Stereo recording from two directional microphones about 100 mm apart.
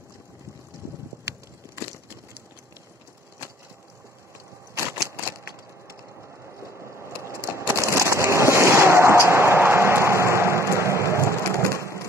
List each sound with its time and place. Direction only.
6.6 s crushing: 25° right (ahead or behind)
11.1 s crushing: 30° left (ahead or behind)